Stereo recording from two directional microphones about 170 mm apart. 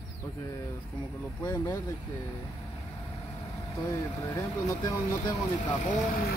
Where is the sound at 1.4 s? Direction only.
20° left (ahead or behind).